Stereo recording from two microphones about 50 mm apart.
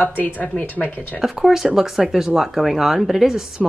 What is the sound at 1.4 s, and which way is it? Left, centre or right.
Speech, centre.